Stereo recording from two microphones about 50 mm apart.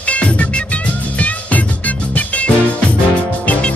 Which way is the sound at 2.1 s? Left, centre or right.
Left.